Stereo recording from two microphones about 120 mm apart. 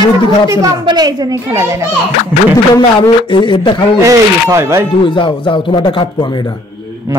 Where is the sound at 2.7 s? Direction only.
45° left (ahead or behind).